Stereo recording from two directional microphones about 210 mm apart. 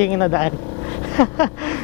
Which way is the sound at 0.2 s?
15° left (ahead or behind).